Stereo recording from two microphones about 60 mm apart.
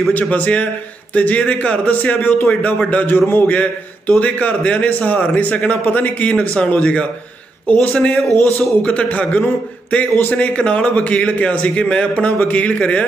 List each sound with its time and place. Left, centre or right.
0.1 s a man's voice: left